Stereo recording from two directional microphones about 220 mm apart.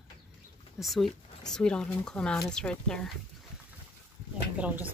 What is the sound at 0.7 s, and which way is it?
Speech, centre (ahead or behind).